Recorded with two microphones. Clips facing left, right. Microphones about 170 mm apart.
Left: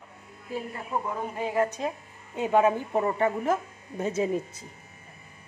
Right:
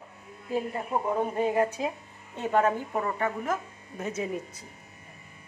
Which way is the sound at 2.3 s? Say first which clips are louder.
Left 3 dB; 10° left (ahead or behind).